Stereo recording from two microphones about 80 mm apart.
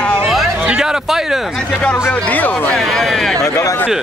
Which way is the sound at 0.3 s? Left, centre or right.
Centre.